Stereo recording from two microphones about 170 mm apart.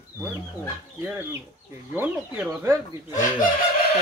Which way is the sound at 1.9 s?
5° right (ahead or behind).